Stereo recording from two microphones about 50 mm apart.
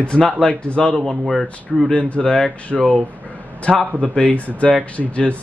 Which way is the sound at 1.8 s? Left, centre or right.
Left.